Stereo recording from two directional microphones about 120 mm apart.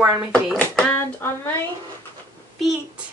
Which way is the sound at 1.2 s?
20° left (ahead or behind).